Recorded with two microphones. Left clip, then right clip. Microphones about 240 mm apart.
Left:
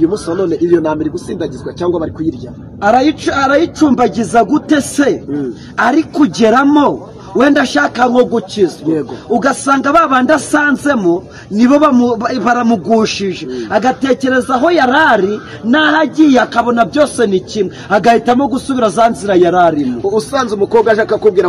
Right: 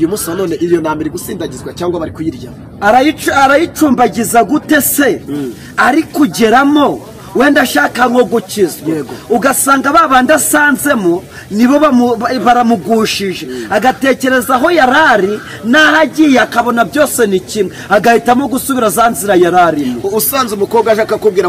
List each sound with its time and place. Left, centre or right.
0.1 s speech: right
2.8 s a man's voice: centre
20.1 s speech: right